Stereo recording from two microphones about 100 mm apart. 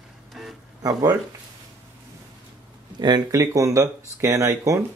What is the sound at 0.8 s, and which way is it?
Speech, 40° right (ahead or behind).